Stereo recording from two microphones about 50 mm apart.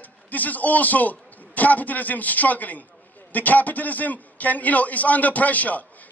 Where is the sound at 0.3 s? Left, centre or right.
Left.